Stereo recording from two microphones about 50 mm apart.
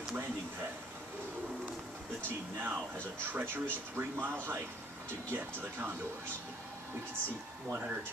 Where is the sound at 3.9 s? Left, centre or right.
Right.